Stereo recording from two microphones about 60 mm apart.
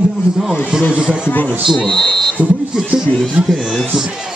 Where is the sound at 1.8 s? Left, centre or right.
Centre.